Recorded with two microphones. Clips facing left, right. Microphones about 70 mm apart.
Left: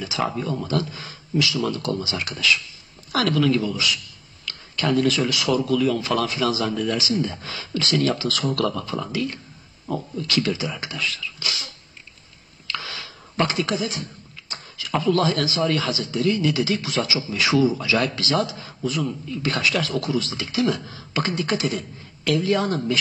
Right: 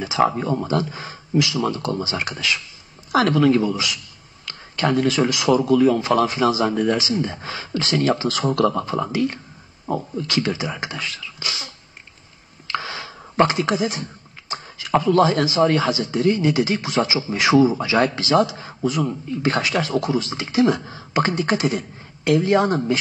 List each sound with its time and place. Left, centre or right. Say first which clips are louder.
0.0 s a man's voice: right 6 dB; right
12.6 s a sound: right 5 dB; right
14.5 s a man's voice: right 6 dB; right